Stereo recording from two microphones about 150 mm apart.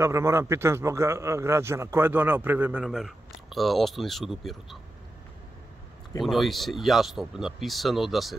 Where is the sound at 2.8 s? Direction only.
Centre (ahead or behind).